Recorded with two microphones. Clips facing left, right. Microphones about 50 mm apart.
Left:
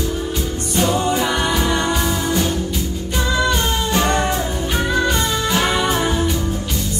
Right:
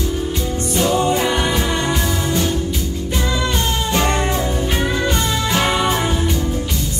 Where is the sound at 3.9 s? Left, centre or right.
Right.